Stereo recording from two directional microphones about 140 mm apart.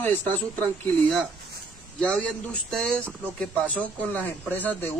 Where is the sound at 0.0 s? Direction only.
15° left (ahead or behind).